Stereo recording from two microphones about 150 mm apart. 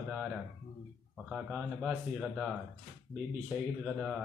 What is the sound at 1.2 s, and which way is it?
Speech, 5° right (ahead or behind).